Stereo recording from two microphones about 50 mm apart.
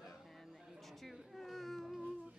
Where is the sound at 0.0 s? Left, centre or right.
Centre.